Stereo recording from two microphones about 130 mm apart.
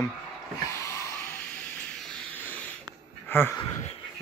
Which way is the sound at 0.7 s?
25° left (ahead or behind).